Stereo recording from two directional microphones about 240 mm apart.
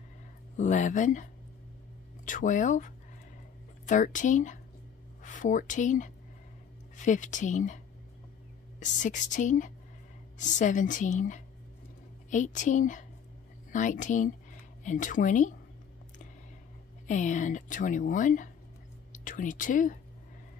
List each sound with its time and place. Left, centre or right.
0.6 s a woman's voice: left
2.2 s a woman's voice: left
17.1 s a woman's voice: left